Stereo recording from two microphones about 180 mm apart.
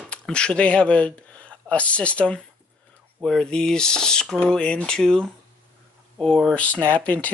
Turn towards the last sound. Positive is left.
turn(degrees=10)  # may be behind; listen again after turning